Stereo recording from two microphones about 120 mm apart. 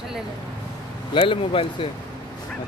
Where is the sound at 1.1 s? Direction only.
45° left (ahead or behind).